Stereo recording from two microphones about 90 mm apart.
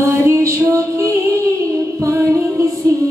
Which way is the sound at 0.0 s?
35° right (ahead or behind).